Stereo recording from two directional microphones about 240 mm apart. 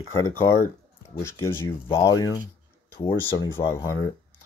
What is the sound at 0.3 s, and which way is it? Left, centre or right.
Speech, centre.